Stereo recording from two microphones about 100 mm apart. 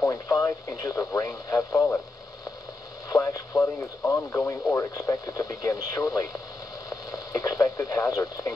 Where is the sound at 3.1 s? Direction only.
35° left (ahead or behind).